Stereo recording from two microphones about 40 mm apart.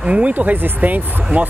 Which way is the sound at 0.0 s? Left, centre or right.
Right.